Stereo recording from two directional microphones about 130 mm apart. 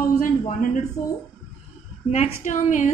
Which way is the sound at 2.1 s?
60° left (ahead or behind).